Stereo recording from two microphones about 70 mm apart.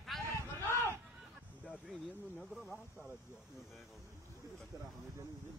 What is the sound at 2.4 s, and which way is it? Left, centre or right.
Snake, centre.